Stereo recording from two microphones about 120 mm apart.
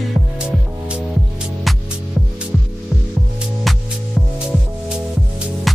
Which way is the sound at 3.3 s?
Centre (ahead or behind).